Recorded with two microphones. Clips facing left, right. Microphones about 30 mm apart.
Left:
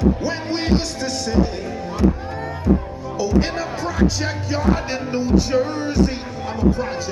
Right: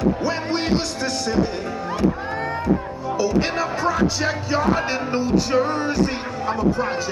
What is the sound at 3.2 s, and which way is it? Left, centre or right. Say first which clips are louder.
Speech: left 1 dB; centre.